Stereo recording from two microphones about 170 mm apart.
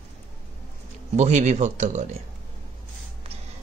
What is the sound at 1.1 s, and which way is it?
Speech, 45° right (ahead or behind).